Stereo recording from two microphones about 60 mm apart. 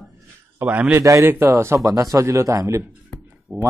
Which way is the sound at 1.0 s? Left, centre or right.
Right.